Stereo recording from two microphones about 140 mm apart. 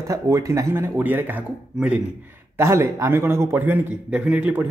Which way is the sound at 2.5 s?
20° right (ahead or behind).